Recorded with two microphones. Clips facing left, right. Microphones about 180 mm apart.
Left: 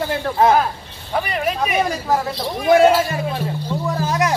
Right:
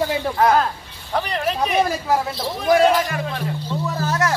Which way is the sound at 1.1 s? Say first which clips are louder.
Left 1 dB; 10° left (ahead or behind).